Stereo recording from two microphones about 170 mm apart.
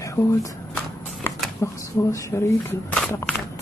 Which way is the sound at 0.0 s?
20° left (ahead or behind).